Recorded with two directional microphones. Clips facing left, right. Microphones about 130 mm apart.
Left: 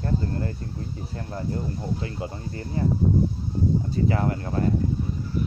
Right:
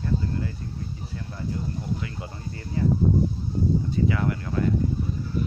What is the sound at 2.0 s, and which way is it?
Speech, 30° left (ahead or behind).